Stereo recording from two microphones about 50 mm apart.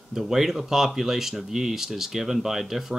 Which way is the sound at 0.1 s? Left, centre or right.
Centre.